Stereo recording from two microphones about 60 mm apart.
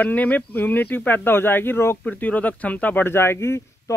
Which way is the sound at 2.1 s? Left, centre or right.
Left.